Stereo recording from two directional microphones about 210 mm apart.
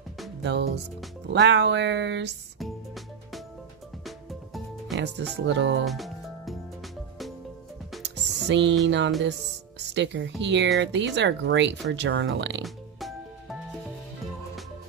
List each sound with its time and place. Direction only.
0.4 s speech: 55° right (ahead or behind)
4.9 s speech: 55° right (ahead or behind)
5.9 s music: centre (ahead or behind)
8.0 s music: 55° right (ahead or behind)
8.8 s speech: 60° right (ahead or behind)
12.6 s music: centre (ahead or behind)